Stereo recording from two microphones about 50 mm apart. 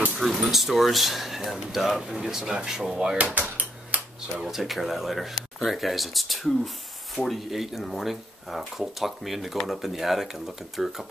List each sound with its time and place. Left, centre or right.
0.1 s speech: centre
3.3 s a sound: right
4.4 s speech: centre